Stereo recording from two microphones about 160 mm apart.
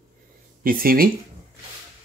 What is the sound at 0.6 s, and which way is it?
Speech, 65° right (ahead or behind).